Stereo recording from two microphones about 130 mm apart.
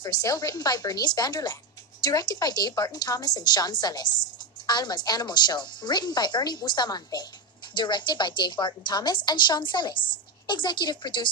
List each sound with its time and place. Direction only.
0.0 s a woman's voice: 30° left (ahead or behind)